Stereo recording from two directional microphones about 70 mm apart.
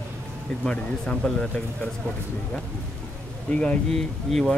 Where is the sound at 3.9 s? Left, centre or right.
Centre.